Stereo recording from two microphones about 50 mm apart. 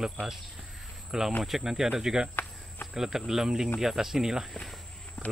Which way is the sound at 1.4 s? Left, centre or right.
Centre.